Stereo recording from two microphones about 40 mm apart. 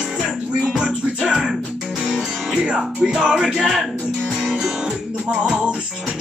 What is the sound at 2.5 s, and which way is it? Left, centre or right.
Speech, right.